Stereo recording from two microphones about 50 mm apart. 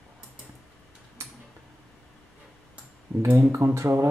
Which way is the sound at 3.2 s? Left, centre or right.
Right.